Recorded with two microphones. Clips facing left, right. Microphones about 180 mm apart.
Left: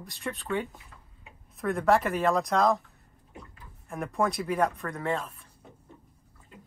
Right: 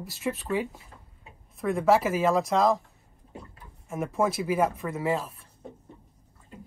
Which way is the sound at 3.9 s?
Centre (ahead or behind).